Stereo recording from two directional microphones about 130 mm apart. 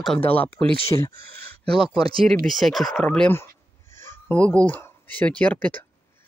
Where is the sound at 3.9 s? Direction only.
20° left (ahead or behind).